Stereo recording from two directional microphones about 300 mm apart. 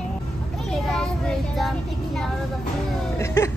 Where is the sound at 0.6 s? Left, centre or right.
Centre.